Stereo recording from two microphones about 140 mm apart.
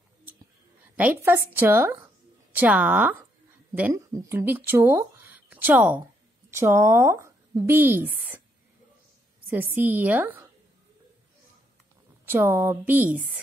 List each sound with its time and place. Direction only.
0.9 s a woman's voice: 15° right (ahead or behind)
9.5 s a woman's voice: 15° right (ahead or behind)
12.3 s a woman's voice: 20° right (ahead or behind)